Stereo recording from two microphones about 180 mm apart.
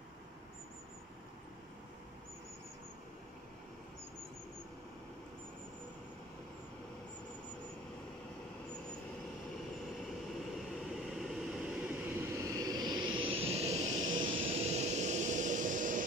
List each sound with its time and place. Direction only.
10.8 s vehicle: 5° right (ahead or behind); by 14.1 s 40° right (ahead or behind)
14.1 s vehicle: 25° right (ahead or behind); by 16.0 s 45° right (ahead or behind)